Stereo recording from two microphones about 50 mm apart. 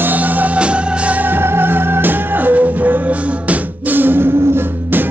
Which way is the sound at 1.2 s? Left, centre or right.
Right.